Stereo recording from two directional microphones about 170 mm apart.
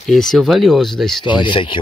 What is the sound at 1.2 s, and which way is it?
Speech, 30° left (ahead or behind).